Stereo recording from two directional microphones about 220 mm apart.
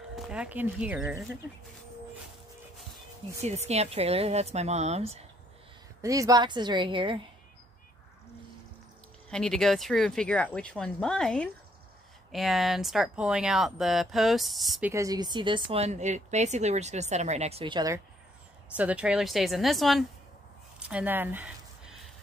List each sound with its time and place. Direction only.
0.1 s speech: 5° right (ahead or behind)
3.4 s a woman's voice: 30° right (ahead or behind)
6.0 s a woman's voice: 15° right (ahead or behind)
9.3 s speech: centre (ahead or behind); by 18.0 s 15° right (ahead or behind)
18.8 s speech: 5° right (ahead or behind)